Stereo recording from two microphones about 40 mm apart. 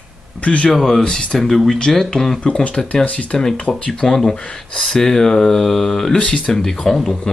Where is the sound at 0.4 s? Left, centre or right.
Left.